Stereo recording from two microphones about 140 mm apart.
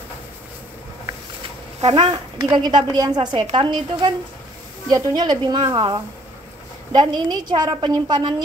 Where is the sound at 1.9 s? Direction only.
35° right (ahead or behind).